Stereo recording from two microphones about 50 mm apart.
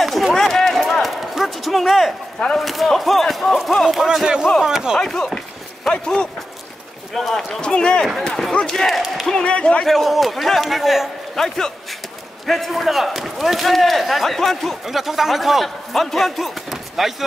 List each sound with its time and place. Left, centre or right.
0.0 s run: centre
2.6 s speech: centre
4.9 s speech: centre
7.2 s speech: centre
7.6 s speech: centre
9.3 s speech: left
9.8 s speech: centre
11.3 s speech: centre